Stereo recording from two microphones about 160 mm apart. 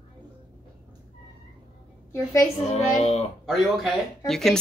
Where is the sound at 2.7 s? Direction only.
40° left (ahead or behind).